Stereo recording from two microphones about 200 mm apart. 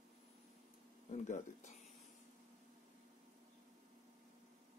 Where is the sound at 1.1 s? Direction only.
35° left (ahead or behind).